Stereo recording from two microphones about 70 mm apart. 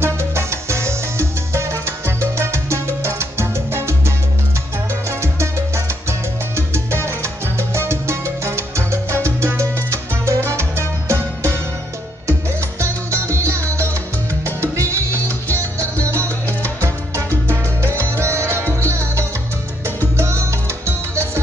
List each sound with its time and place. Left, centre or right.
0.0 s salsa music: right
6.0 s salsa music: right
12.3 s music: right
18.7 s salsa music: right
20.2 s music: right